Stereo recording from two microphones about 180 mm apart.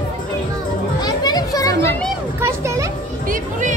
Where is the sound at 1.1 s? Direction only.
20° left (ahead or behind).